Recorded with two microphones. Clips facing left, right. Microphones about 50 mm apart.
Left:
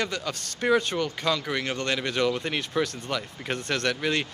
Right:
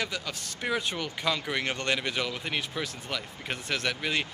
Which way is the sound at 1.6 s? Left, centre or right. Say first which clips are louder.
Left 1 dB; right.